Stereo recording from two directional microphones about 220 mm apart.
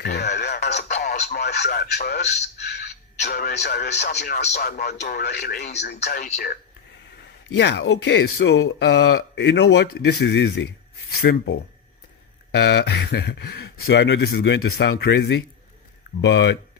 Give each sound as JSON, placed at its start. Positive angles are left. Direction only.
{"t": 0.0, "sound": "radio", "side_deg": 50}
{"t": 0.4, "sound": "music", "side_deg": 50}
{"t": 1.3, "sound": "speech", "side_deg": 50}
{"t": 2.2, "sound": "speech", "side_deg": 30}
{"t": 3.3, "sound": "speech", "side_deg": 45}